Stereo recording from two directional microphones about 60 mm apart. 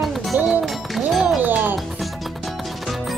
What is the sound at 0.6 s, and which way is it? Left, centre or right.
Music, centre.